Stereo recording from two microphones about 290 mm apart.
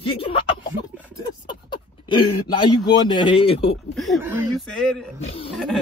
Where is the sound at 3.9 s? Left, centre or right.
Centre.